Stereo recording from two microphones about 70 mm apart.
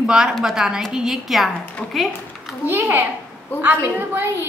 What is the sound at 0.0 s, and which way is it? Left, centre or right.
A woman's voice, centre.